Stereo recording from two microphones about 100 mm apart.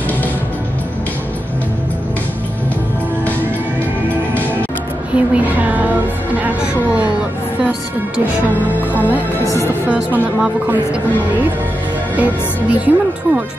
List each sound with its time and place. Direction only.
4.3 s music: 15° left (ahead or behind)
5.1 s female singing: 15° right (ahead or behind)
6.4 s speech: 15° right (ahead or behind)
9.8 s speech: 15° right (ahead or behind)
12.2 s speech: 15° right (ahead or behind)